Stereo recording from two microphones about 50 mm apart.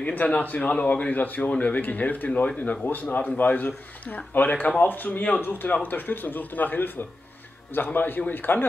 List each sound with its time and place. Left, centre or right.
0.0 s speech: left